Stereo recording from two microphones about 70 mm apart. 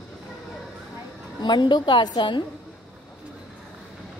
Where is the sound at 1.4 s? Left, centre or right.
Left.